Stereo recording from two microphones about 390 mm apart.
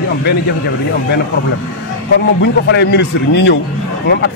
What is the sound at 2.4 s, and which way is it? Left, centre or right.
A man's voice, left.